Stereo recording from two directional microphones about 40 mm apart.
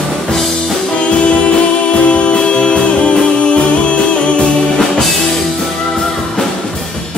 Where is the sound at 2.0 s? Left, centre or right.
Left.